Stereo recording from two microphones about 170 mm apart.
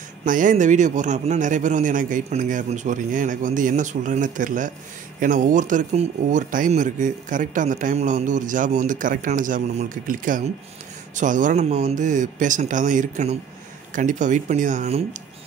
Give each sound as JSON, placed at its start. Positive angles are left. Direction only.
{"t": 0.2, "sound": "speech", "side_deg": -50}